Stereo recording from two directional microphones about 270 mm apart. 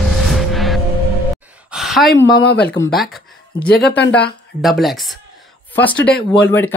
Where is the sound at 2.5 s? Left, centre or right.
Left.